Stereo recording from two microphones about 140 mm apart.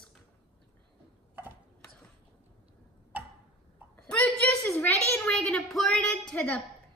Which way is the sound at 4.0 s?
10° left (ahead or behind).